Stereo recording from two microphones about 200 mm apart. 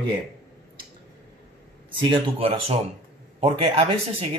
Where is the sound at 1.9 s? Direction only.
25° right (ahead or behind).